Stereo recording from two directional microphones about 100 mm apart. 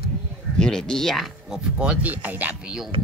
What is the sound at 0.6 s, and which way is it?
Speech, 5° left (ahead or behind).